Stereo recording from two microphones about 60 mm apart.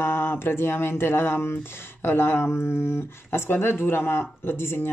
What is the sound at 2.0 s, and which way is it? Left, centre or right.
Speech, left.